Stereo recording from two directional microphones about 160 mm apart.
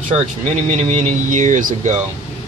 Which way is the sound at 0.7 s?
45° right (ahead or behind).